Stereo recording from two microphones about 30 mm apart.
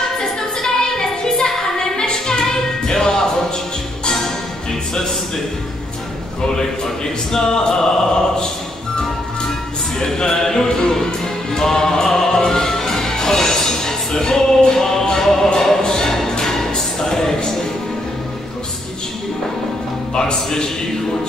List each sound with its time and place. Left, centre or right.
0.2 s music: left
7.3 s music: left
9.9 s music: centre
20.2 s music: left